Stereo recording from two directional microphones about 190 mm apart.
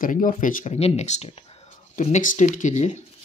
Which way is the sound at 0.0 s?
45° left (ahead or behind).